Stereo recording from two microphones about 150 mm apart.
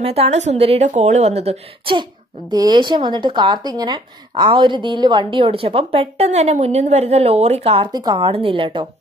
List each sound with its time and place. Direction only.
0.0 s a woman's voice: 45° right (ahead or behind)
2.5 s speech: 25° right (ahead or behind)
7.9 s speech: 25° right (ahead or behind)